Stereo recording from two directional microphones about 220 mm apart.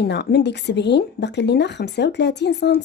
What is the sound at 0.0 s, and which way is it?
A woman's voice, 50° left (ahead or behind).